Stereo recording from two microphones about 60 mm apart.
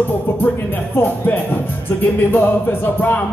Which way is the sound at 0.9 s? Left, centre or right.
Left.